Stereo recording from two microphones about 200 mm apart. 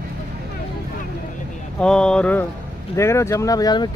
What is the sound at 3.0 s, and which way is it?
Speech, 15° left (ahead or behind).